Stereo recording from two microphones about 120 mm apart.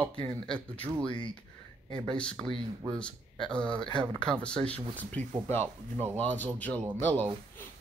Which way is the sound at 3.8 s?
40° right (ahead or behind).